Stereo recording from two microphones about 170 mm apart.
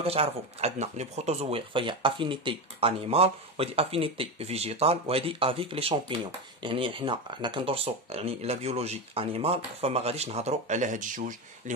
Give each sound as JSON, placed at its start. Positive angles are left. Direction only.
{"t": 0.0, "sound": "speech", "side_deg": -35}